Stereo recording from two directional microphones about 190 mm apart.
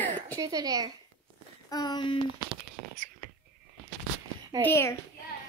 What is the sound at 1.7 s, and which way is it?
Speech, 20° left (ahead or behind).